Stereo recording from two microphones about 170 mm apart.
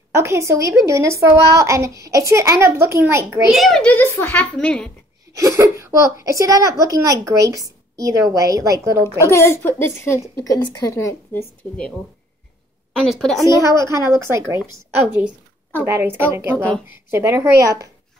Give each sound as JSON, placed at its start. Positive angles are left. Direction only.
{"t": 0.1, "sound": "a woman's voice", "side_deg": -15}
{"t": 3.4, "sound": "a child's voice", "side_deg": 0}
{"t": 5.4, "sound": "a child's voice", "side_deg": -20}
{"t": 9.2, "sound": "a child's voice", "side_deg": 15}
{"t": 13.0, "sound": "a woman's voice", "side_deg": 0}
{"t": 13.5, "sound": "a woman's voice", "side_deg": -15}
{"t": 15.8, "sound": "a woman's voice", "side_deg": -10}